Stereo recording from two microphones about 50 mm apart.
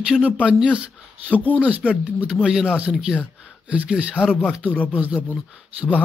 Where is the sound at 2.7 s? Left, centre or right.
Right.